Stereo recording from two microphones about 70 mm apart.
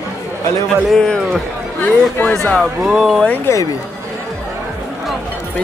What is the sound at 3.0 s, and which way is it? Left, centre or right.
Speech, centre.